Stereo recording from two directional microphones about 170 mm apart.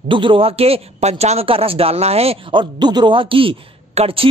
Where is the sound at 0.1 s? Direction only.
30° right (ahead or behind).